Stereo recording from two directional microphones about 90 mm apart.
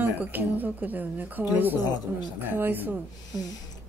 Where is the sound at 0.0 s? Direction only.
20° right (ahead or behind).